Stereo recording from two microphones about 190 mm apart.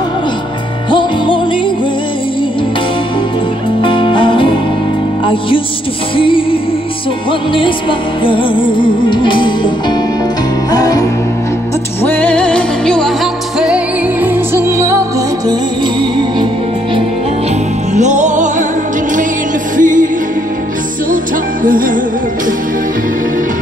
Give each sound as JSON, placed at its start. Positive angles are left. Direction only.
{"t": 0.8, "sound": "music", "side_deg": 25}
{"t": 3.8, "sound": "music", "side_deg": 25}
{"t": 12.0, "sound": "music", "side_deg": 10}
{"t": 16.0, "sound": "music", "side_deg": -25}
{"t": 17.9, "sound": "music", "side_deg": -40}
{"t": 19.8, "sound": "music", "side_deg": -45}
{"t": 21.6, "sound": "music", "side_deg": -45}